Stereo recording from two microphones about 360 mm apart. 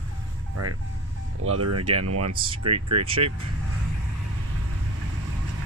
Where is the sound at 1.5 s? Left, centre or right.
Right.